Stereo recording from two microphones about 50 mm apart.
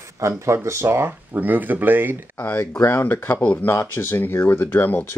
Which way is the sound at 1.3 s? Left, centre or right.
Right.